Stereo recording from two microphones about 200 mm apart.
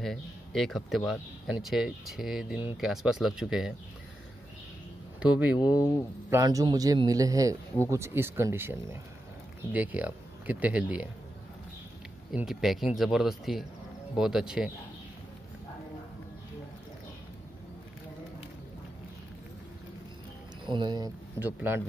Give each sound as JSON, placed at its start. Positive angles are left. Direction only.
{"t": 0.0, "sound": "speech", "side_deg": 0}
{"t": 5.2, "sound": "speech", "side_deg": -5}
{"t": 6.3, "sound": "a man's voice", "side_deg": -15}
{"t": 12.3, "sound": "speech", "side_deg": 0}
{"t": 20.6, "sound": "speech", "side_deg": -25}
{"t": 21.4, "sound": "a man's voice", "side_deg": -10}